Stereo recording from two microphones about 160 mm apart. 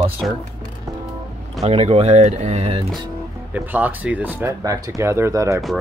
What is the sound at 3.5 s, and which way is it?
Speech, 10° right (ahead or behind).